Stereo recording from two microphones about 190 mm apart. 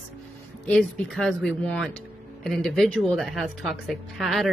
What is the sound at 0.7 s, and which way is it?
Speech, 5° left (ahead or behind).